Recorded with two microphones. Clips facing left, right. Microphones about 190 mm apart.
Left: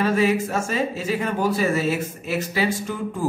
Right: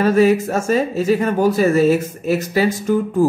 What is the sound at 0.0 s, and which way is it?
Speech, 40° right (ahead or behind).